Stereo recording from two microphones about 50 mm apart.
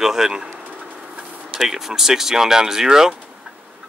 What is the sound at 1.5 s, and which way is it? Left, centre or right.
Speech, centre.